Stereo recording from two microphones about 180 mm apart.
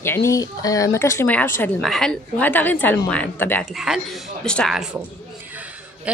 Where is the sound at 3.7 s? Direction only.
Centre (ahead or behind).